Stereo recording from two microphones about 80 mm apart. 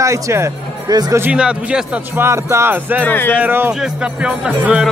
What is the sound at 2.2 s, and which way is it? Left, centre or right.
Music, right.